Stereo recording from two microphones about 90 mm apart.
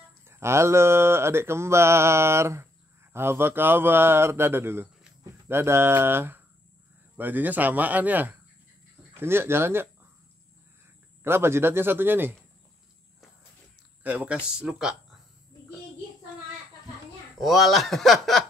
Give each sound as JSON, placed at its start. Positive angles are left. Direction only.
{"t": 0.3, "sound": "mantra", "side_deg": -30}
{"t": 7.2, "sound": "speech", "side_deg": -20}
{"t": 11.2, "sound": "speech", "side_deg": -25}
{"t": 14.0, "sound": "speech", "side_deg": -15}
{"t": 17.4, "sound": "speech", "side_deg": 0}